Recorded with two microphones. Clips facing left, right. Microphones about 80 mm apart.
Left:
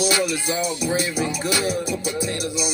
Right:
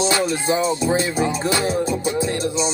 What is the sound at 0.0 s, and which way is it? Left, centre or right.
Music, right.